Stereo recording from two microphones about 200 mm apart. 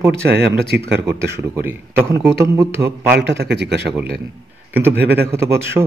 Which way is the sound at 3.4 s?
55° right (ahead or behind).